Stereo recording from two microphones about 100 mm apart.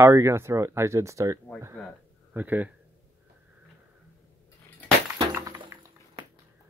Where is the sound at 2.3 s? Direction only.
20° right (ahead or behind).